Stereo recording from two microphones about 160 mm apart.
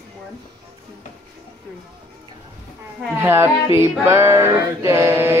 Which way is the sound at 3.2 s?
15° right (ahead or behind).